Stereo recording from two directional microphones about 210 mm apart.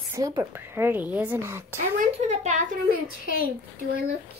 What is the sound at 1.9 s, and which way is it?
A child's voice, 30° right (ahead or behind).